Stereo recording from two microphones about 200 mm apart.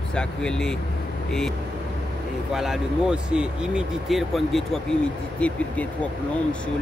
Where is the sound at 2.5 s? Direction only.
Centre (ahead or behind).